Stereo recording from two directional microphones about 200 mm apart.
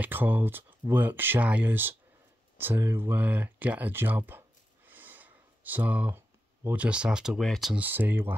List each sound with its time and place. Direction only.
0.0 s speech: 10° right (ahead or behind)